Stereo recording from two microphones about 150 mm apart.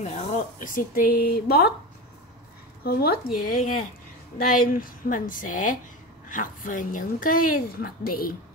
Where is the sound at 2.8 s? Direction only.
90° left.